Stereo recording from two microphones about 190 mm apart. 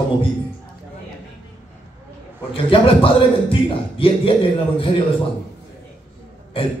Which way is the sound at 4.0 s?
30° left (ahead or behind).